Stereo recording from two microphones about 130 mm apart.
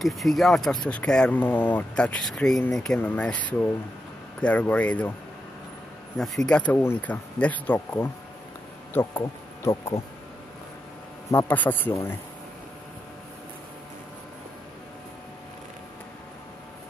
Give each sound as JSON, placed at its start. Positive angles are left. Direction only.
{"t": 0.0, "sound": "speech", "side_deg": 0}
{"t": 6.1, "sound": "speech", "side_deg": 5}
{"t": 9.2, "sound": "speech", "side_deg": 20}
{"t": 11.2, "sound": "speech", "side_deg": 15}